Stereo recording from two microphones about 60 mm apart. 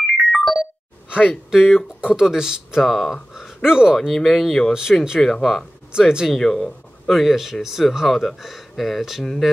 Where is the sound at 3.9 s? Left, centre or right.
Centre.